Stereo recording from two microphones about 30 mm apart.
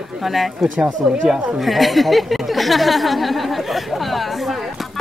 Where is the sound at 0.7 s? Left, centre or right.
Centre.